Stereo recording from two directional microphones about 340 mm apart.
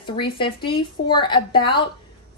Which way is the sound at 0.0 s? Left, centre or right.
Centre.